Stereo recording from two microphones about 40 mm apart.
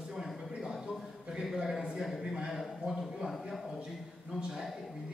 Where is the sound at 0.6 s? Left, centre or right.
Centre.